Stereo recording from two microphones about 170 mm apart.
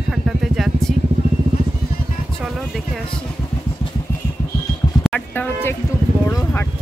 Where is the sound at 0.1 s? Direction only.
Centre (ahead or behind).